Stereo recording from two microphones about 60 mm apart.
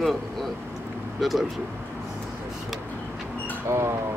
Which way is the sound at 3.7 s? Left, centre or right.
Right.